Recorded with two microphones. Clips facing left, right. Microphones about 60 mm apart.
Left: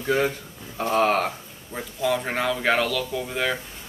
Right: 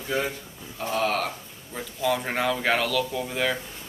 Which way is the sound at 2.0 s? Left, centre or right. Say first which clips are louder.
Left 1 dB; centre.